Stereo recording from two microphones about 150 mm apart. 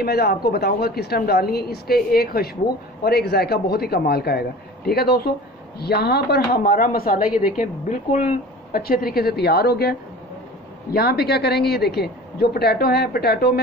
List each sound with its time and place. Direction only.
0.0 s a woman's voice: 90° left; by 7.2 s 75° left (ahead or behind)
7.3 s a woman's voice: 65° left (ahead or behind); by 13.6 s 90° left